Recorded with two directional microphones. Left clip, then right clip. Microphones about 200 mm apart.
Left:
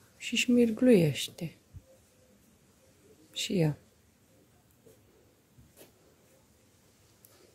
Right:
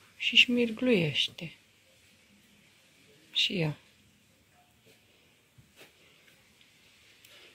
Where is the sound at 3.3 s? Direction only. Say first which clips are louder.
Right 3 dB; 35° left (ahead or behind).